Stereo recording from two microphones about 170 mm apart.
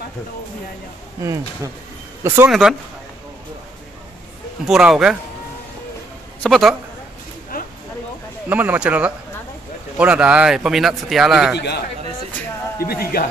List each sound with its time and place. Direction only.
1.2 s speech: 20° right (ahead or behind)
4.6 s speech: centre (ahead or behind)
6.4 s speech: centre (ahead or behind)
8.5 s speech: 10° right (ahead or behind)
11.5 s a man's voice: 75° left (ahead or behind)
12.8 s speech: 65° left (ahead or behind)